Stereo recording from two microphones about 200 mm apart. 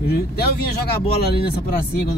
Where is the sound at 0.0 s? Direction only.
50° left (ahead or behind).